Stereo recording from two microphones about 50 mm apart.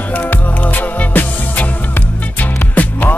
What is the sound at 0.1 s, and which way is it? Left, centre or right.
Music, left.